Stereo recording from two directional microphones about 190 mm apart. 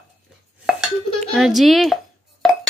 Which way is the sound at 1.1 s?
Centre (ahead or behind).